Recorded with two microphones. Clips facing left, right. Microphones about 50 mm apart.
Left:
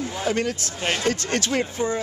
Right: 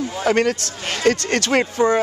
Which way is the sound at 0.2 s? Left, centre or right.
Right.